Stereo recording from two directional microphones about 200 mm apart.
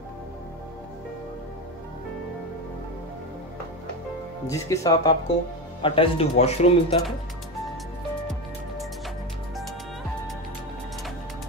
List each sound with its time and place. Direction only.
4.5 s speech: 15° left (ahead or behind)
5.8 s speech: 25° left (ahead or behind)